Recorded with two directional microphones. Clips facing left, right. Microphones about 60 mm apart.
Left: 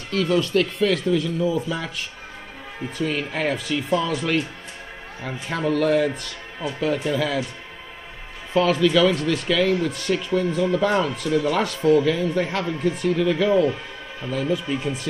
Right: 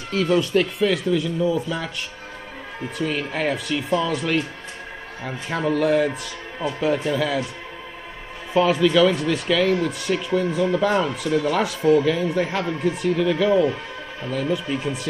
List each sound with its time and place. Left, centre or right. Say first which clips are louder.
0.1 s speech: right 1 dB; centre
0.7 s speech: even; centre
8.5 s speech: right 1 dB; centre